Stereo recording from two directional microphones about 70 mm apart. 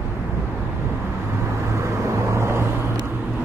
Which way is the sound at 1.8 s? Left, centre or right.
Right.